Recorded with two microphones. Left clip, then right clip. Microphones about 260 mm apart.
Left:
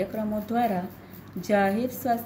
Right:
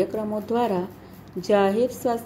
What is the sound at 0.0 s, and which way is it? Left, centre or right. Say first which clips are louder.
A woman's voice: right 4 dB; centre.